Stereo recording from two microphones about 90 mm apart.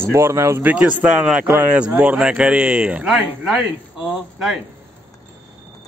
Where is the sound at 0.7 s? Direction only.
15° right (ahead or behind).